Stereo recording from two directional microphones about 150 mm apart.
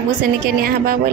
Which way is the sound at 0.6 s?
80° right.